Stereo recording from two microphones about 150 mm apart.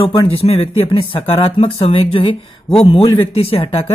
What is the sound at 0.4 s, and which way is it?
Speech, 40° left (ahead or behind).